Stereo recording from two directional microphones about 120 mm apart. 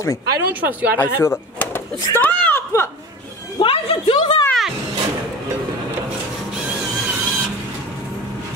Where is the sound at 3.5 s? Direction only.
45° left (ahead or behind).